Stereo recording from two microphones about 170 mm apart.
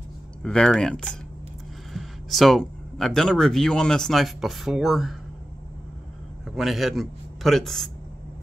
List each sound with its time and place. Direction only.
0.4 s speech: 5° left (ahead or behind)
6.4 s a man's voice: centre (ahead or behind)